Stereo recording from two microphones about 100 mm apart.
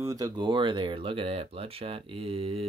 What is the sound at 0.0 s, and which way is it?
Speech, 35° right (ahead or behind).